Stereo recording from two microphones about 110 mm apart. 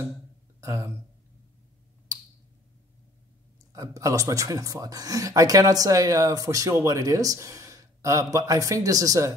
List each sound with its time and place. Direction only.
0.6 s speech: 25° right (ahead or behind)
3.7 s speech: 30° right (ahead or behind)